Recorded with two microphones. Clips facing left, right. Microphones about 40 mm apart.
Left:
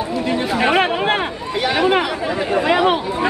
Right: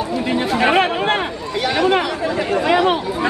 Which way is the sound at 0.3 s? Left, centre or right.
Centre.